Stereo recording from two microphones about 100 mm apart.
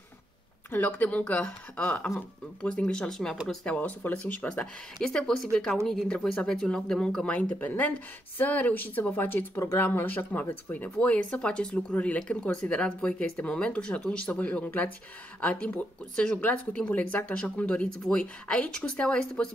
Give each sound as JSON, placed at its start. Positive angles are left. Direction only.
{"t": 0.7, "sound": "speech", "side_deg": 20}